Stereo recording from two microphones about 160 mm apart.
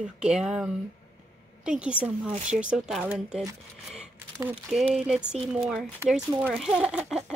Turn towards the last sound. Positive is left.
turn(degrees=-5)  # may be behind; listen again after turning